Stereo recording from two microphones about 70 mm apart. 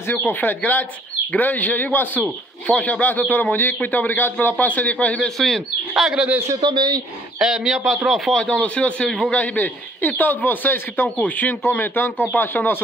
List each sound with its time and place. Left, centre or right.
0.1 s a man's voice: left
5.4 s speech: centre
6.1 s speech: centre
6.6 s speech: right
7.3 s speech: centre
8.4 s a man's voice: centre